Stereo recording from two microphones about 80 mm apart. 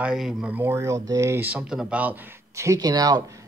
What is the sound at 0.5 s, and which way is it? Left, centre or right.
Speech, right.